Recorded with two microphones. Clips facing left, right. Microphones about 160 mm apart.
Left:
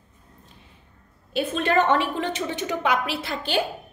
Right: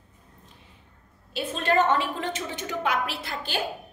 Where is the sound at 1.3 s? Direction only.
60° left (ahead or behind); by 3.6 s 85° left.